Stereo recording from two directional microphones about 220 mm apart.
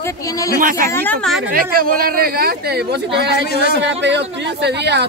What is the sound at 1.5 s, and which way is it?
Speech, 40° right (ahead or behind).